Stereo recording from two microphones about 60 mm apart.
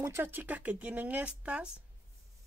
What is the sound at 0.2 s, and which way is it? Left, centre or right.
Speech, right.